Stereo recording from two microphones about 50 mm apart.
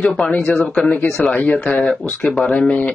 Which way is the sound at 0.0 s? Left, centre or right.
Left.